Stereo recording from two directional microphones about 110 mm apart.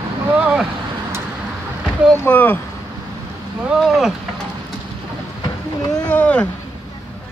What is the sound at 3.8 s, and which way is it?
Speech, centre (ahead or behind).